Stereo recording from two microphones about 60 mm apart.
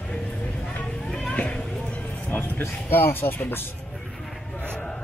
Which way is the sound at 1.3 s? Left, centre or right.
Left.